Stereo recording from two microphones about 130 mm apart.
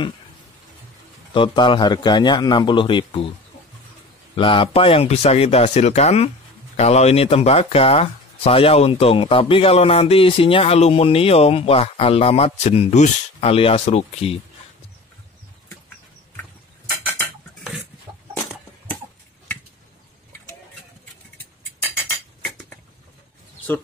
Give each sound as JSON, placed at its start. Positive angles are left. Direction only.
{"t": 1.3, "sound": "a man's voice", "side_deg": 40}
{"t": 4.4, "sound": "speech", "side_deg": 45}
{"t": 22.4, "sound": "chink", "side_deg": 10}